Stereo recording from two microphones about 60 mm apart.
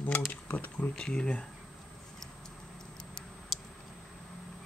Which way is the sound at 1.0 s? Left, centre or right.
Centre.